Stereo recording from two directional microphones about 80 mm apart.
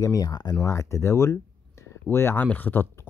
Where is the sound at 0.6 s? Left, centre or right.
Left.